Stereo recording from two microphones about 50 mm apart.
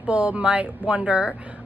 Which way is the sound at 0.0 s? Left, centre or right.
Right.